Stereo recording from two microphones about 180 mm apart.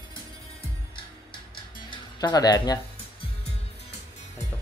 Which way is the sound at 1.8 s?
20° left (ahead or behind).